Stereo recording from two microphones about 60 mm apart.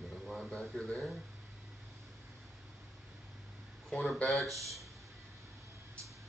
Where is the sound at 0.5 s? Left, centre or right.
Centre.